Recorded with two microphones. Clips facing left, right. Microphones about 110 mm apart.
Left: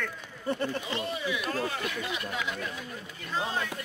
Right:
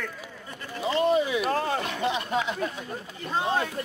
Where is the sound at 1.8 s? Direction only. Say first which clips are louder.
Right 6 dB; 30° right (ahead or behind).